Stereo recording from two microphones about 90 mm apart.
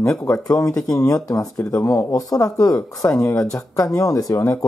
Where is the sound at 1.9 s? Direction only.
40° left (ahead or behind).